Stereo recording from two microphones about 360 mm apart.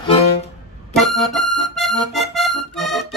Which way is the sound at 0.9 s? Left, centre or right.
Centre.